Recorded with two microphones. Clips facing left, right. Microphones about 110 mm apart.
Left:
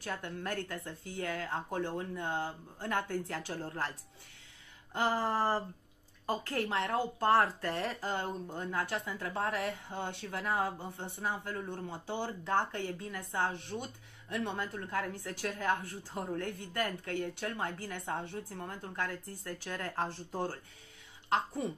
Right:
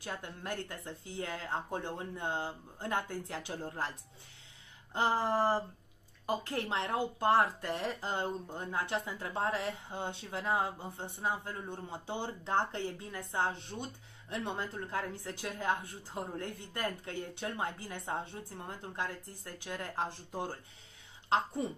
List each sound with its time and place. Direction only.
0.0 s speech: 20° right (ahead or behind)
4.9 s speech: 20° right (ahead or behind)